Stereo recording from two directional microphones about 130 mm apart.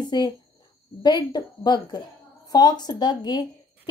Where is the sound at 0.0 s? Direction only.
35° left (ahead or behind).